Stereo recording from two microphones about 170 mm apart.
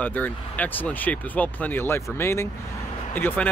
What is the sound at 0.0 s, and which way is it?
Speech, 10° left (ahead or behind).